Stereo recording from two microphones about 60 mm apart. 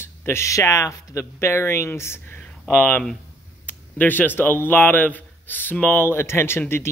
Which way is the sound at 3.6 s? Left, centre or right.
Left.